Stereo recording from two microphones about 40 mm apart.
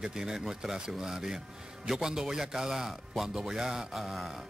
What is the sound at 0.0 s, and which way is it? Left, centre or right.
A man's voice, centre.